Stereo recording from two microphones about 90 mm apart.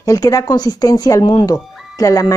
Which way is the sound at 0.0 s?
35° left (ahead or behind).